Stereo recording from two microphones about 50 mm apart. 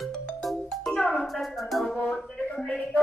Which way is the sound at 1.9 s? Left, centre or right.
Left.